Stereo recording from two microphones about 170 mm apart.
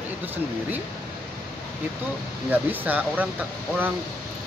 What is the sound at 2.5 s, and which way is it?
Speech, 10° right (ahead or behind).